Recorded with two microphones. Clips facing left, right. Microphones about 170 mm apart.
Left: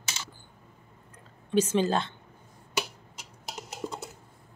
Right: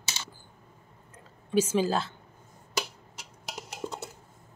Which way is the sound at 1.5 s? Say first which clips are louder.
Left 1 dB; 5° right (ahead or behind).